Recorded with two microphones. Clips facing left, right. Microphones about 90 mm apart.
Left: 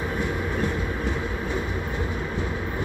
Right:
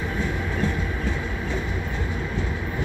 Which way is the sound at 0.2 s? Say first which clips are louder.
Right 1 dB; 15° left (ahead or behind).